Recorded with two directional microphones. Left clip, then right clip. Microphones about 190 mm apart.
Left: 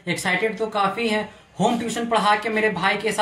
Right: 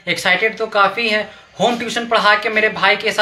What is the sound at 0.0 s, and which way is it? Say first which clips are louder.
Speech: right 7 dB; 5° left (ahead or behind).